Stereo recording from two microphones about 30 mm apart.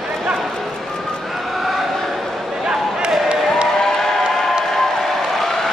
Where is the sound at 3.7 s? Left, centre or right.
Centre.